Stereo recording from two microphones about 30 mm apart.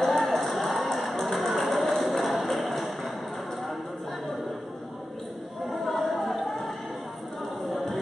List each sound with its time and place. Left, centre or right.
0.0 s run: centre
1.0 s music: centre
5.7 s music: centre
7.7 s chant: centre